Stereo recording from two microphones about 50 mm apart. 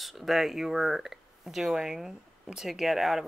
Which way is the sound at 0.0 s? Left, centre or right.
Centre.